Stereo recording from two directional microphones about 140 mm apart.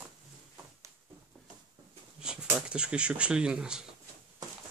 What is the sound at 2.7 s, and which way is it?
Speech, 5° right (ahead or behind).